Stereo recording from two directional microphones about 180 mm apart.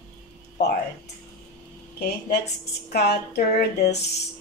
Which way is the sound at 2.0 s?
65° left (ahead or behind).